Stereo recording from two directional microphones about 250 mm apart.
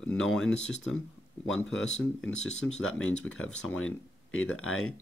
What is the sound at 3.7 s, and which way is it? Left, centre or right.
Speech, left.